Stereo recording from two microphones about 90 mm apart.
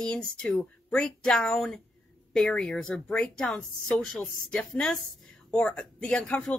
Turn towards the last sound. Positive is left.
turn(degrees=15)  # may be behind; listen again after turning